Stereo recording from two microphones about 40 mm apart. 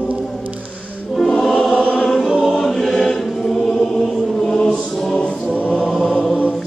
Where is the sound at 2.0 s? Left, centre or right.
Centre.